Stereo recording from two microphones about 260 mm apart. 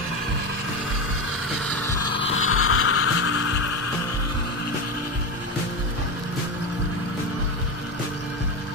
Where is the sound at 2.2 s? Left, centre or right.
Left.